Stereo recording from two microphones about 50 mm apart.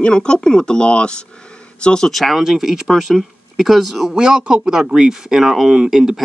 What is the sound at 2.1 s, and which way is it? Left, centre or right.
Speech, centre.